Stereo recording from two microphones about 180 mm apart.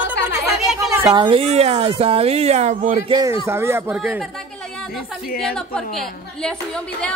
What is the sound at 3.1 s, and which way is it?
Speech, 20° right (ahead or behind).